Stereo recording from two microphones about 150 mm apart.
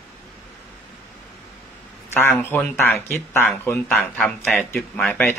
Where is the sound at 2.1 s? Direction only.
15° left (ahead or behind).